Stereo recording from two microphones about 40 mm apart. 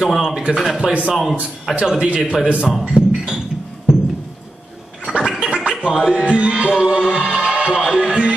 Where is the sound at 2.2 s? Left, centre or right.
Right.